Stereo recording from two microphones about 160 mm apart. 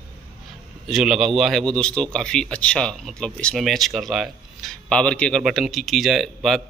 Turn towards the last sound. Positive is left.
turn(degrees=0)  # may be behind; listen again after turning